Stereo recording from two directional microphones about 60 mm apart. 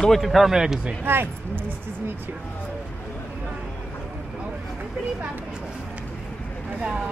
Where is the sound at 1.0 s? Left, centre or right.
Right.